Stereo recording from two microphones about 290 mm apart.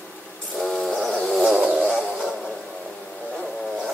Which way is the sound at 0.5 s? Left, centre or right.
Centre.